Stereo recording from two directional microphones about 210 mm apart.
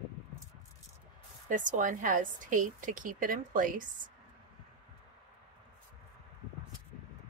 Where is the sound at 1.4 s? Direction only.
40° right (ahead or behind).